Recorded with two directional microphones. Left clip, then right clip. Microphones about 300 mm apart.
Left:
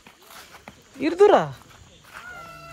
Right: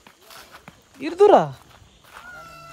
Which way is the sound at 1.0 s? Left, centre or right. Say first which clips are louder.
Right 2 dB; centre.